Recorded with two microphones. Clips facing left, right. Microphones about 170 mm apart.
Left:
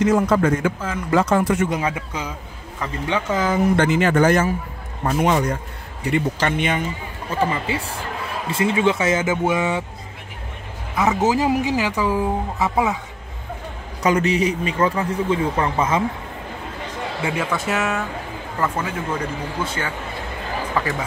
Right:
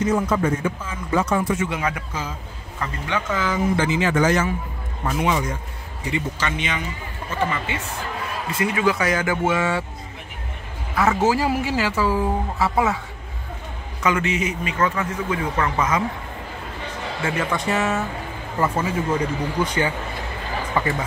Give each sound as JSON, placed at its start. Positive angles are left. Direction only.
{"t": 0.0, "sound": "a man's voice", "side_deg": 90}
{"t": 0.6, "sound": "speech", "side_deg": 80}
{"t": 1.7, "sound": "speech", "side_deg": 25}
{"t": 3.1, "sound": "a man's voice", "side_deg": 35}
{"t": 3.7, "sound": "a man's voice", "side_deg": 60}
{"t": 7.2, "sound": "a man's voice", "side_deg": 30}
{"t": 11.0, "sound": "speech", "side_deg": 20}
{"t": 14.0, "sound": "a man's voice", "side_deg": 35}
{"t": 17.2, "sound": "a man's voice", "side_deg": 5}
{"t": 20.8, "sound": "speech", "side_deg": 0}